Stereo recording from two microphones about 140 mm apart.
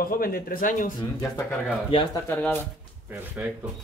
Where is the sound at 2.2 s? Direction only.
15° left (ahead or behind).